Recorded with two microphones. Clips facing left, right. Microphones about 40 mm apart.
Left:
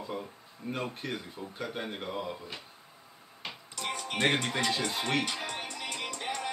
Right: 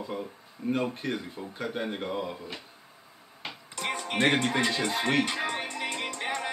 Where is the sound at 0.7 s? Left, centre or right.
Centre.